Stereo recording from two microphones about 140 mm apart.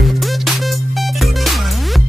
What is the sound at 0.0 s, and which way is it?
Music, centre (ahead or behind).